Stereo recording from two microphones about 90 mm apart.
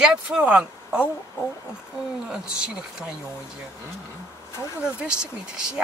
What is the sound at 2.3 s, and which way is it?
Speech, 10° right (ahead or behind).